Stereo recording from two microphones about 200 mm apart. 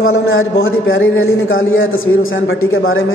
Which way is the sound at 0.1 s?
80° left.